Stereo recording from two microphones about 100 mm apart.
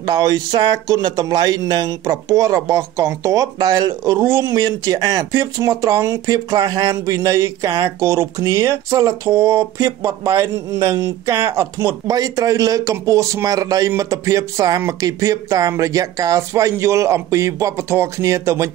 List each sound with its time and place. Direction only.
0.0 s speech: 40° right (ahead or behind)
6.3 s a man's voice: 40° right (ahead or behind)
9.3 s a man's voice: 20° right (ahead or behind)
9.8 s a man's voice: 30° right (ahead or behind)